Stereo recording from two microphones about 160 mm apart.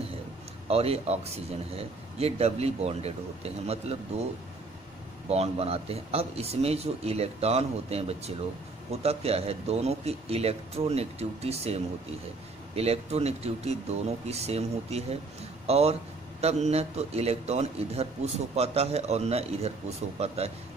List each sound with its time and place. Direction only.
0.7 s a man's voice: 40° right (ahead or behind)
5.3 s a man's voice: 40° right (ahead or behind)